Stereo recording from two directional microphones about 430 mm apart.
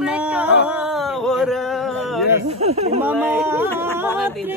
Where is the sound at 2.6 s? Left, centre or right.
Centre.